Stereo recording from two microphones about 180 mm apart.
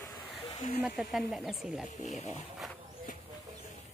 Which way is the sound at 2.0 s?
40° left (ahead or behind).